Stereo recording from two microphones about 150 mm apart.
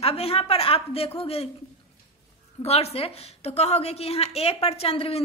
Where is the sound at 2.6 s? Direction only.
45° left (ahead or behind).